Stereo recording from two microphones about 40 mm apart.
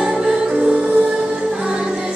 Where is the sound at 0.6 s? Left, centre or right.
Right.